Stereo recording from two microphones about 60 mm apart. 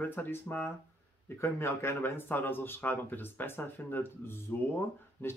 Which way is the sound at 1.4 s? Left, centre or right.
Left.